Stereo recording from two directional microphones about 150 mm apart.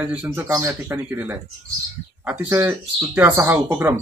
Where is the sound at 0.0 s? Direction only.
10° right (ahead or behind).